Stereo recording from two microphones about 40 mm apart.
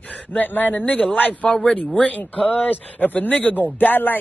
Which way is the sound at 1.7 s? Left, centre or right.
Left.